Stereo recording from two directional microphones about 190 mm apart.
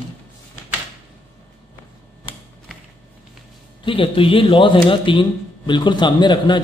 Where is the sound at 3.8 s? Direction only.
25° left (ahead or behind).